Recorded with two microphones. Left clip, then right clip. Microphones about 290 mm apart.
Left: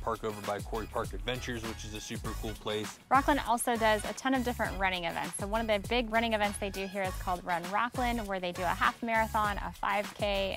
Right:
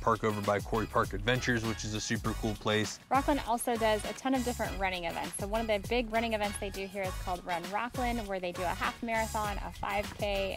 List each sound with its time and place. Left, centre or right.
0.0 s speech: right
3.1 s speech: left